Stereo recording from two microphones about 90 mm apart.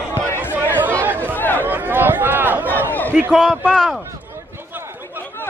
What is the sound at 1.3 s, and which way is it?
Chatter, 20° left (ahead or behind).